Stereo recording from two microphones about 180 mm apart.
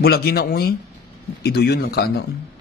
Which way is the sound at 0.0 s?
60° left (ahead or behind).